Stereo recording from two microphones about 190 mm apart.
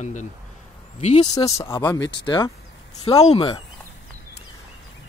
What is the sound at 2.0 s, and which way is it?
Speech, 65° left (ahead or behind).